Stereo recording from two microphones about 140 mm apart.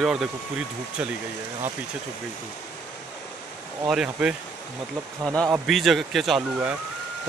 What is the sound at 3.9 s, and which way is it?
Speech, 5° right (ahead or behind).